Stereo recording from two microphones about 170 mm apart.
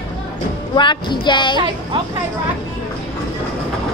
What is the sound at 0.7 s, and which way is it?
Female singing, 25° left (ahead or behind).